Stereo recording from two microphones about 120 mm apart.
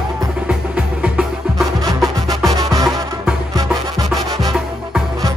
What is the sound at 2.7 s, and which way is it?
Music, 30° right (ahead or behind).